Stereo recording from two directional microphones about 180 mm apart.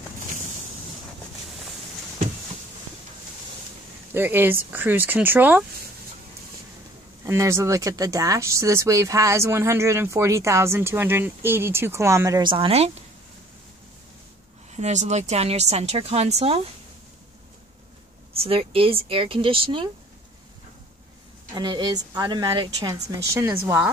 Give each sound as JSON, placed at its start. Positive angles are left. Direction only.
{"t": 4.1, "sound": "speech", "side_deg": -10}
{"t": 7.2, "sound": "speech", "side_deg": -15}
{"t": 12.5, "sound": "speech", "side_deg": -35}
{"t": 14.7, "sound": "speech", "side_deg": -40}
{"t": 18.3, "sound": "speech", "side_deg": -30}
{"t": 21.5, "sound": "a woman's voice", "side_deg": -25}